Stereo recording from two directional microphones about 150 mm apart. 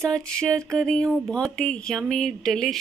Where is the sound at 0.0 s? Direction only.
5° left (ahead or behind).